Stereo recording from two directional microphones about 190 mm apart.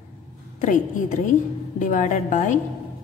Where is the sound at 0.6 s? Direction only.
40° left (ahead or behind).